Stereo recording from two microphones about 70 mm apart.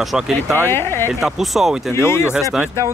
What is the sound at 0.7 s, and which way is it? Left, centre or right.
Speech, left.